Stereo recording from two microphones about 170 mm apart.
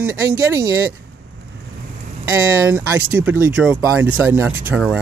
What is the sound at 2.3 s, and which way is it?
Speech, 15° right (ahead or behind).